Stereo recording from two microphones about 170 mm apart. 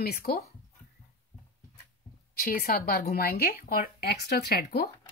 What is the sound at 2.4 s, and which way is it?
Speech, 60° left (ahead or behind).